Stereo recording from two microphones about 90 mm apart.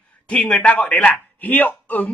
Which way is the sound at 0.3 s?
10° left (ahead or behind).